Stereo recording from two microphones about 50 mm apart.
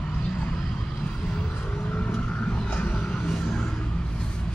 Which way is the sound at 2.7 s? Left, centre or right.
Left.